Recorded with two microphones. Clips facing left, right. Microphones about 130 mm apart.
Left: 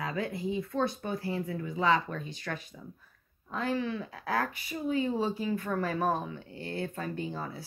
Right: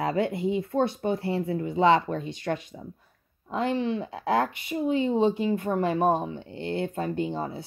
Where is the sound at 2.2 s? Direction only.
50° right (ahead or behind).